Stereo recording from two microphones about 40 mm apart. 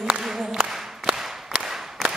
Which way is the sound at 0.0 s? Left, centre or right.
Centre.